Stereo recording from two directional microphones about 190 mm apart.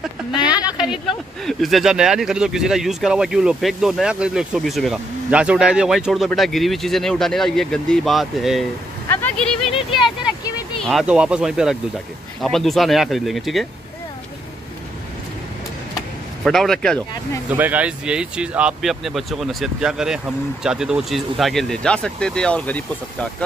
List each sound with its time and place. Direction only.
0.5 s speech: 20° left (ahead or behind)
1.4 s speech: centre (ahead or behind)
9.1 s vehicle: 5° left (ahead or behind)
9.8 s vehicle: 25° left (ahead or behind)
10.8 s speech: centre (ahead or behind)
16.4 s speech: centre (ahead or behind)
17.5 s speech: 10° right (ahead or behind); by 22.8 s 5° left (ahead or behind)